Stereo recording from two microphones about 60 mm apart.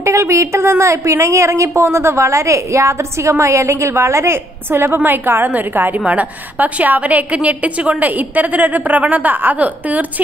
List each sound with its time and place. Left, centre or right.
0.0 s a woman's voice: right
4.6 s a woman's voice: right